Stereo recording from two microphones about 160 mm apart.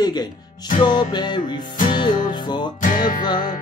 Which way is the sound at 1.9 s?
30° left (ahead or behind).